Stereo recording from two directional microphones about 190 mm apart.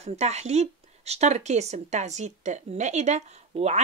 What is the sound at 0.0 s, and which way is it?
Speech, 35° right (ahead or behind).